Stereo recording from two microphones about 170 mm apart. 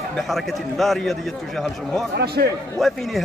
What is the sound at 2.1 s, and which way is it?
Speech, 70° right (ahead or behind).